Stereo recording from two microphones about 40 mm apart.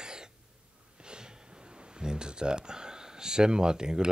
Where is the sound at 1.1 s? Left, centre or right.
Centre.